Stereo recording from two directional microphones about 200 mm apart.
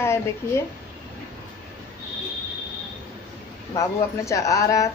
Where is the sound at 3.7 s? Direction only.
15° left (ahead or behind).